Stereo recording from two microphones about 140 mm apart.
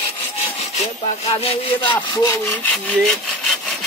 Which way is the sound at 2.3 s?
15° left (ahead or behind).